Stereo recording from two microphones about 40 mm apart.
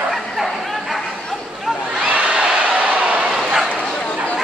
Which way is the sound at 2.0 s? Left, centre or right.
Right.